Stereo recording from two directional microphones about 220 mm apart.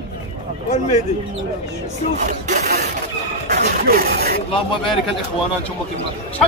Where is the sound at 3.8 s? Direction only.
45° right (ahead or behind).